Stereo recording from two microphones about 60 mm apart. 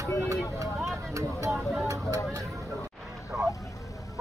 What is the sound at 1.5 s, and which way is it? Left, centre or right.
Speech, centre.